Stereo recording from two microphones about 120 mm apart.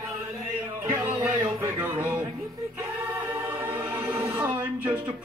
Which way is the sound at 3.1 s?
25° right (ahead or behind).